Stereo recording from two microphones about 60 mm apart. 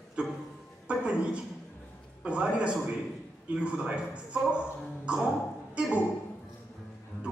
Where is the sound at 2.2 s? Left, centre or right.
Centre.